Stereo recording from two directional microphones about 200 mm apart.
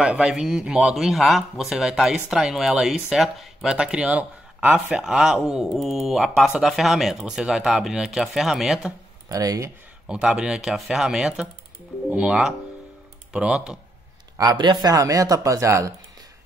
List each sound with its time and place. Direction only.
0.0 s a man's voice: 5° right (ahead or behind)
9.3 s speech: 15° right (ahead or behind)
10.0 s a man's voice: 5° right (ahead or behind)
14.4 s speech: 20° right (ahead or behind)